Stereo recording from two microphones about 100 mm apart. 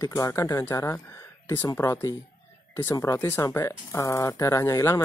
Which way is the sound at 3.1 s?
25° left (ahead or behind).